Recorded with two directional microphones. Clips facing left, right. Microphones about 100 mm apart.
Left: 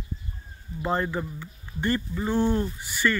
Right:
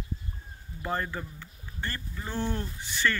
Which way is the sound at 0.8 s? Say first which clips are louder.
Left 6 dB; 20° left (ahead or behind).